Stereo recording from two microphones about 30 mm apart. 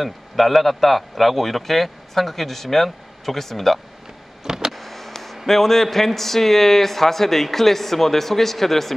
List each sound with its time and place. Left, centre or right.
0.0 s a man's voice: centre
4.5 s vehicle: centre
4.7 s a sound: centre
5.5 s a man's voice: centre